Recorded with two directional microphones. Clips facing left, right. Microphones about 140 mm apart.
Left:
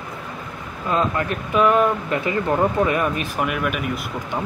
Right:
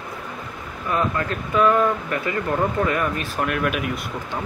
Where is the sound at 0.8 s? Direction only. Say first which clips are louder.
Left 2 dB; 20° left (ahead or behind).